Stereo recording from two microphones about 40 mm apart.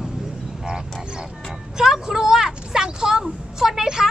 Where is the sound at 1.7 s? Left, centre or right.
Centre.